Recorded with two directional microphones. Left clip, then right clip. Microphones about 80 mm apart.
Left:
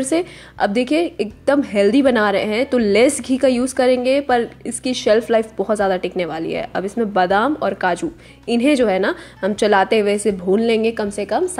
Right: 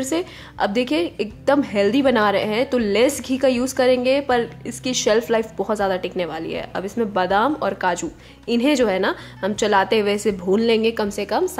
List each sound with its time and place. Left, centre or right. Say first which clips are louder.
0.0 s a woman's voice: left 4 dB; left
7.5 s a woman's voice: left 2 dB; centre
9.9 s a woman's voice: left 3 dB; centre